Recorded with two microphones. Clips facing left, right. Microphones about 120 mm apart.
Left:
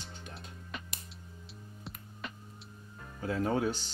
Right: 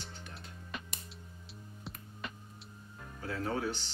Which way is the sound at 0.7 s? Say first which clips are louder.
Right 1 dB; centre (ahead or behind).